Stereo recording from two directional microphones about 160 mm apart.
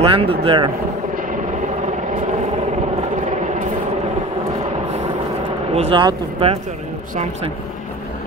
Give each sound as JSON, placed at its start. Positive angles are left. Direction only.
{"t": 0.0, "sound": "speech", "side_deg": -35}
{"t": 5.8, "sound": "speech", "side_deg": -30}